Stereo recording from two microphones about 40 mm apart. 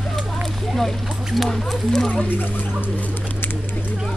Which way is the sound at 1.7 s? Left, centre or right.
Centre.